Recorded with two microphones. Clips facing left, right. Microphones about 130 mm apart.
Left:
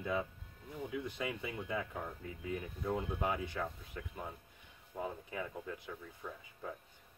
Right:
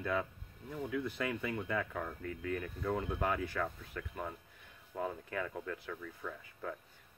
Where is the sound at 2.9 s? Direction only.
60° right (ahead or behind).